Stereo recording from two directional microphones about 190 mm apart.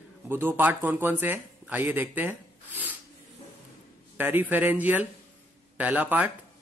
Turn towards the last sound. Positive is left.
turn(degrees=-10)  # may be behind; listen again after turning